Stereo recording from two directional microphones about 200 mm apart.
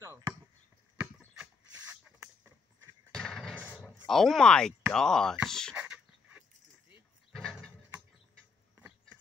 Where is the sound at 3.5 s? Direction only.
5° right (ahead or behind).